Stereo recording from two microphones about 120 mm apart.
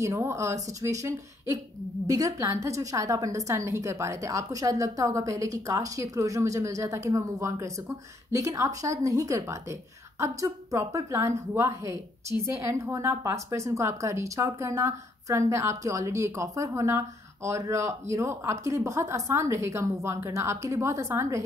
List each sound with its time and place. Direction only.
0.0 s a woman's voice: 25° right (ahead or behind)